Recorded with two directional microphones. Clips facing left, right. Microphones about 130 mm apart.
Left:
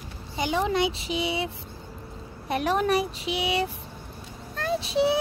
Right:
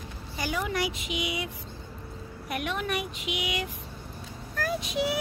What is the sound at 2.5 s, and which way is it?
Speech, 35° left (ahead or behind).